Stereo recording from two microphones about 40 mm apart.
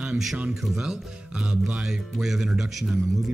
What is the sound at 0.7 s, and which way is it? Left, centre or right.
Speech, right.